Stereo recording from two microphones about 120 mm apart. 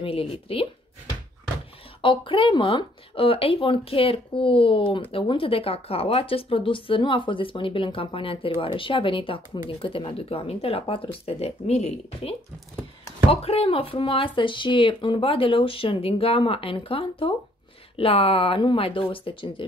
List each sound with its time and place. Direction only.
0.0 s speech: 50° left (ahead or behind)
2.0 s speech: 45° left (ahead or behind)